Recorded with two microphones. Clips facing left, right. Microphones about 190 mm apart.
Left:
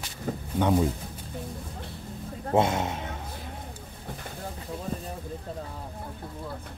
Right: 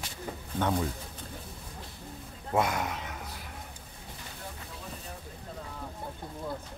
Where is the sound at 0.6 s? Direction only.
15° left (ahead or behind).